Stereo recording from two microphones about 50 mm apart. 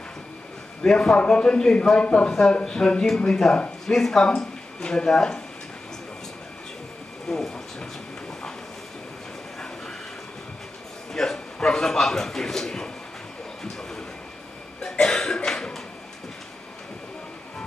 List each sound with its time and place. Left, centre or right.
0.8 s a man's voice: centre
3.8 s speech: centre
7.2 s a sound: centre
11.1 s a man's voice: centre
13.7 s a sound: centre
15.0 s cough: centre